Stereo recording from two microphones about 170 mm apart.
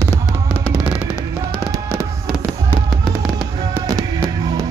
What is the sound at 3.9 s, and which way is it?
Music, 20° right (ahead or behind).